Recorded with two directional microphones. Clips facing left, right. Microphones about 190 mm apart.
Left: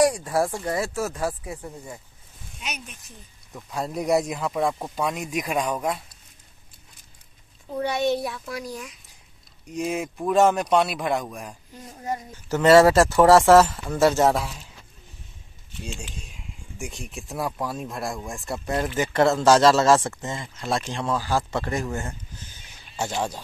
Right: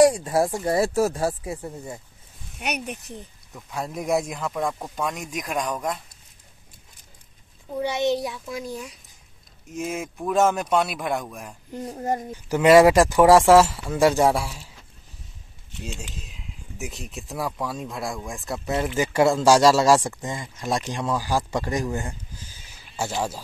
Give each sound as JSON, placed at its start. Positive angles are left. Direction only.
{"t": 0.0, "sound": "a child's voice", "side_deg": -25}
{"t": 0.7, "sound": "speech", "side_deg": -35}
{"t": 2.6, "sound": "speech", "side_deg": -65}
{"t": 3.5, "sound": "speech", "side_deg": 0}
{"t": 7.7, "sound": "a child's voice", "side_deg": -20}
{"t": 9.7, "sound": "speech", "side_deg": 0}
{"t": 11.9, "sound": "speech", "side_deg": -45}
{"t": 12.4, "sound": "speech", "side_deg": -15}
{"t": 16.0, "sound": "speech", "side_deg": 0}